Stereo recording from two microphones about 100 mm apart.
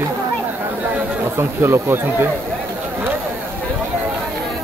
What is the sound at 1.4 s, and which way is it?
Speech, 25° right (ahead or behind).